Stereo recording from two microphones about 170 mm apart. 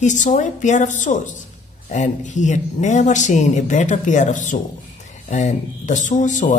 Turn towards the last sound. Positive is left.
turn(degrees=45)  # may be behind; listen again after turning